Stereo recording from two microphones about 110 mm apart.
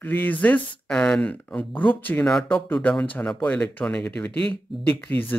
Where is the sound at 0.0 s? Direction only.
15° left (ahead or behind).